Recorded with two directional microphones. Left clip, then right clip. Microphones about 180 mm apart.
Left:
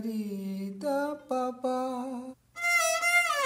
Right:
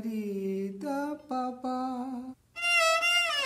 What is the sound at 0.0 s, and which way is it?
Mantra, 25° left (ahead or behind).